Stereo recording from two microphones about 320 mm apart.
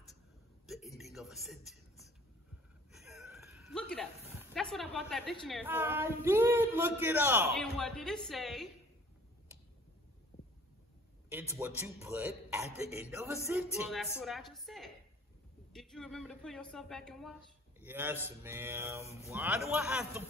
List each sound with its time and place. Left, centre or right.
0.7 s a sound: centre
2.9 s speech: centre
10.3 s heart sounds: left
11.2 s a man's voice: centre